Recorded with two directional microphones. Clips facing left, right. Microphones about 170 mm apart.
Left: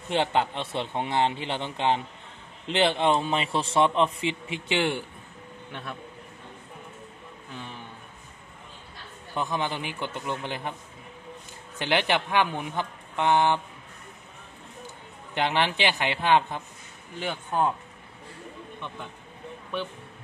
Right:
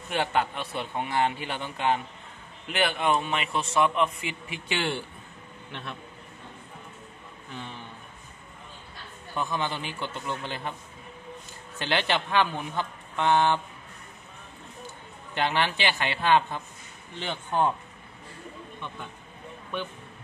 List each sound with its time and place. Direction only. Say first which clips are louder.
0.1 s a man's voice: left 2 dB; 20° left (ahead or behind); by 5.9 s 5° left (ahead or behind)
9.3 s speech: left 1 dB; 15° left (ahead or behind)
11.8 s speech: left 2 dB; 15° left (ahead or behind)
15.3 s speech: left 1 dB; 15° left (ahead or behind)
17.2 s speech: even; 5° left (ahead or behind)